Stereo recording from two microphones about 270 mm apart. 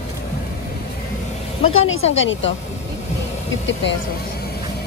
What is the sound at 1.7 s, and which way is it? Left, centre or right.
Speech, left.